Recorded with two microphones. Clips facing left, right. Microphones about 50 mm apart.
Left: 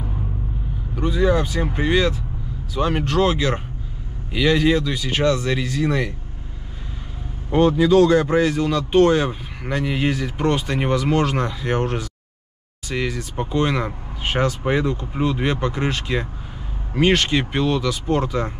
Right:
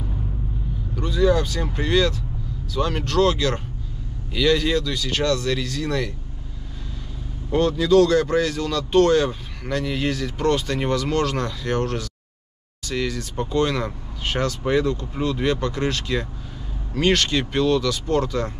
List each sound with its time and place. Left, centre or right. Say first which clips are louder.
0.9 s speech: left 1 dB; centre
7.5 s speech: left 2 dB; centre